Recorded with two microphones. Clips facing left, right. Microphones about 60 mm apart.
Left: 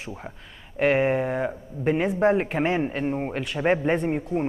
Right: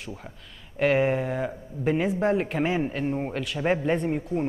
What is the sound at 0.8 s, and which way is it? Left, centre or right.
Speech, centre.